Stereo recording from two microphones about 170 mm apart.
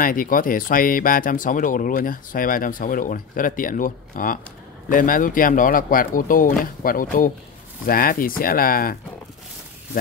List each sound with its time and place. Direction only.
0.0 s speech: 55° left (ahead or behind)